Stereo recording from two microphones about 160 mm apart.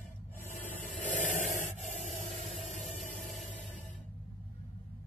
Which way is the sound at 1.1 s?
50° left (ahead or behind).